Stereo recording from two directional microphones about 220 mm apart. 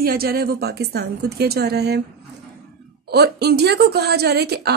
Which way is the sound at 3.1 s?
45° right (ahead or behind).